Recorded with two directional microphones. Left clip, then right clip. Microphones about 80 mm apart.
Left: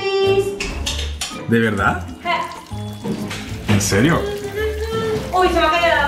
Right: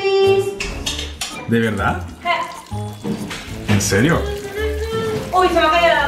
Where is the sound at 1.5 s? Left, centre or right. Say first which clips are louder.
Left 2 dB; left.